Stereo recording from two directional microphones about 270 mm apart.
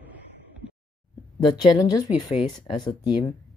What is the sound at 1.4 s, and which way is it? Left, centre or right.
Speech, centre.